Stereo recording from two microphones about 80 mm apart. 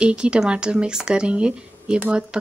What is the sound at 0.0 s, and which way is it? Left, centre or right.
Speech, centre.